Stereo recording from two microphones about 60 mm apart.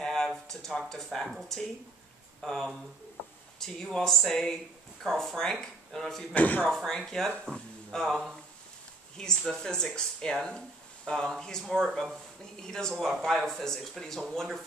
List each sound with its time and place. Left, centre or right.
0.0 s a sound: centre
0.5 s speech: centre
6.3 s speech: left
6.9 s speech: centre